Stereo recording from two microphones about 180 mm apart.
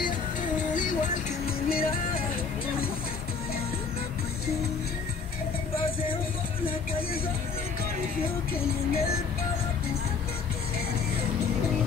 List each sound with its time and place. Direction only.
1.7 s music: 55° left (ahead or behind)